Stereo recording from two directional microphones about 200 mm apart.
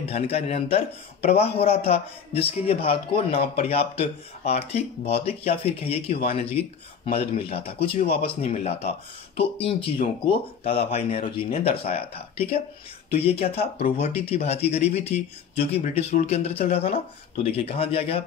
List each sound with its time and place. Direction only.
0.1 s a man's voice: 30° left (ahead or behind)